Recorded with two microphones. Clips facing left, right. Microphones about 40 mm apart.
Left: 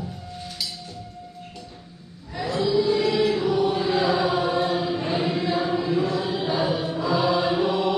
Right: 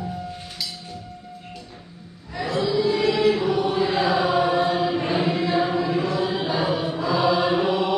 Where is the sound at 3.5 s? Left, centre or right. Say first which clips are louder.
Even; right.